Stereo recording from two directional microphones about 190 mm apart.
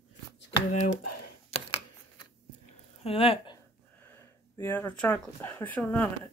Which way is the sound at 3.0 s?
30° left (ahead or behind).